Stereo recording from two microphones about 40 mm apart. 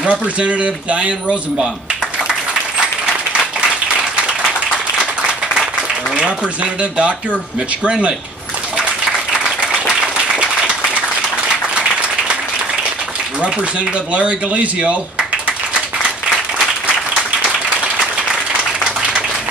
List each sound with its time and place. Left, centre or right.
0.0 s speech: right
6.1 s speech: right
14.1 s speech: right